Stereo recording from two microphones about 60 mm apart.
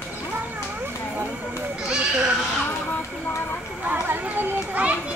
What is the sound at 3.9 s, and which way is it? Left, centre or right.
Children playing, right.